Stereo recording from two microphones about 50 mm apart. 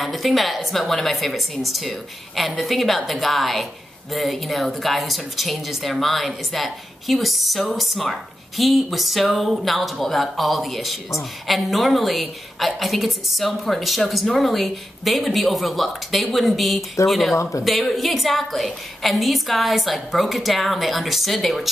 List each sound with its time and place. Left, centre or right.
0.0 s a woman's voice: centre
17.4 s speech: left
17.6 s a woman's voice: centre